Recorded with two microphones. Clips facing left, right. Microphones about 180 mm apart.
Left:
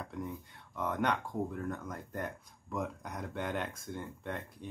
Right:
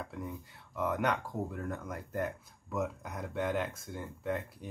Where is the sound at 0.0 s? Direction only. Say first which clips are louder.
Even; centre (ahead or behind).